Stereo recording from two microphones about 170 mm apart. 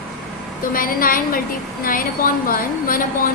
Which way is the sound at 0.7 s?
55° left (ahead or behind).